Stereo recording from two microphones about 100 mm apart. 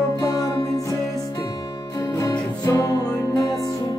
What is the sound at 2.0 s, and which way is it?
Music, 30° left (ahead or behind).